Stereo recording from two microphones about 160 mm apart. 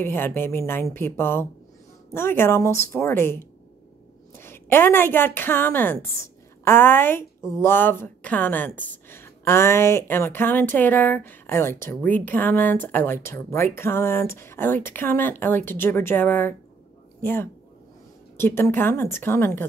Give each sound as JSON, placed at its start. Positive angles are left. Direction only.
{"t": 0.0, "sound": "a woman's voice", "side_deg": 15}